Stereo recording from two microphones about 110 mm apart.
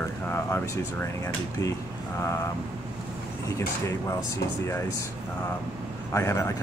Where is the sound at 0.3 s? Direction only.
20° left (ahead or behind).